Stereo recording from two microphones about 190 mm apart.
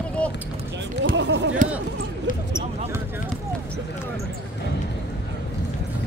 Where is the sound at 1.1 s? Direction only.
70° right (ahead or behind).